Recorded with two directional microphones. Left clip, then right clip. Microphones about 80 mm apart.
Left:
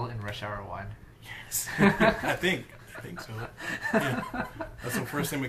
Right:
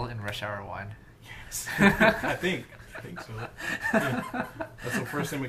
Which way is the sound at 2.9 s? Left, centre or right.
Right.